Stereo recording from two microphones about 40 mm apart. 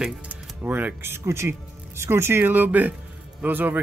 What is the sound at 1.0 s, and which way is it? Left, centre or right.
Speech, right.